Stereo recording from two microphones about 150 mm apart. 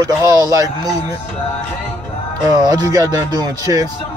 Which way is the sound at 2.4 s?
25° right (ahead or behind).